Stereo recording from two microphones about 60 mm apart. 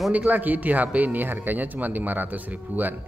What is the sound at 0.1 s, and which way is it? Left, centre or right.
A man's voice, right.